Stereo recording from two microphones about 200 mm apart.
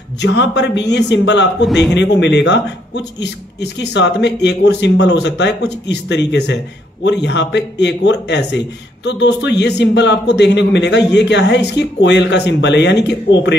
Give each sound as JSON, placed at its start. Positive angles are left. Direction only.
{"t": 0.2, "sound": "a man's voice", "side_deg": 60}